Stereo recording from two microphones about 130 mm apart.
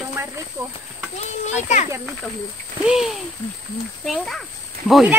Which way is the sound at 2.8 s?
5° right (ahead or behind).